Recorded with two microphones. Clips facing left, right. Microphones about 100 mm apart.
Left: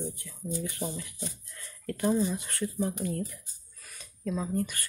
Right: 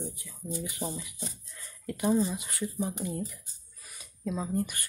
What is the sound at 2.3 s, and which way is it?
Speech, 10° right (ahead or behind).